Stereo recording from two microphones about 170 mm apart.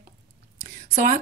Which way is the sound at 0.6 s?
45° right (ahead or behind).